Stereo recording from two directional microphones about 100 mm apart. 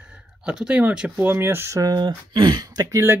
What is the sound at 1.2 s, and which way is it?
Speech, 20° right (ahead or behind).